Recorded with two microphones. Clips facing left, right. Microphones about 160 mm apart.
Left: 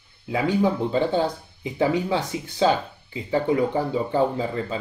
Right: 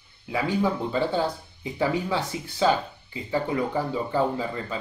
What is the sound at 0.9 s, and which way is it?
Speech, 20° left (ahead or behind).